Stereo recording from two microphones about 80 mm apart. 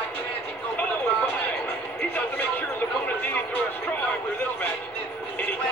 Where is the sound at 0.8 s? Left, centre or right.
Centre.